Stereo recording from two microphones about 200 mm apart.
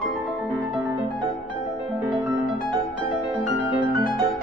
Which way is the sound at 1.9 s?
20° right (ahead or behind).